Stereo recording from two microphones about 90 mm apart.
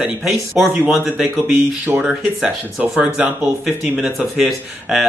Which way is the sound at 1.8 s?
20° right (ahead or behind).